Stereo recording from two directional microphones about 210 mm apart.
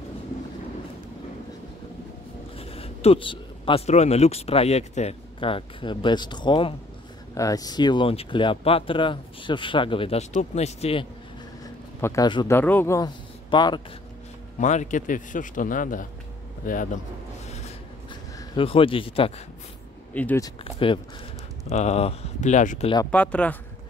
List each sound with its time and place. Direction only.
2.5 s speech: 30° left (ahead or behind)
11.6 s a sound: 15° left (ahead or behind)
12.5 s speech: 10° left (ahead or behind)
14.6 s a man's voice: 35° left (ahead or behind)
18.5 s speech: 25° left (ahead or behind)
20.2 s speech: 10° left (ahead or behind)
20.6 s a man's voice: 25° left (ahead or behind)
23.1 s speech: 5° left (ahead or behind)